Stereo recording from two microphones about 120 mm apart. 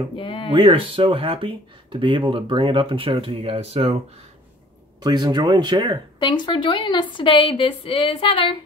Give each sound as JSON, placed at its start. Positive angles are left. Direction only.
{"t": 0.1, "sound": "speech", "side_deg": 45}
{"t": 0.5, "sound": "speech", "side_deg": -45}
{"t": 5.0, "sound": "speech", "side_deg": -35}
{"t": 6.1, "sound": "a woman's voice", "side_deg": 40}